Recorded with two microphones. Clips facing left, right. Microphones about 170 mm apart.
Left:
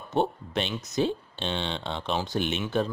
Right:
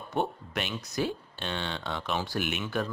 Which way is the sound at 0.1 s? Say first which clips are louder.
Left 4 dB; 25° left (ahead or behind).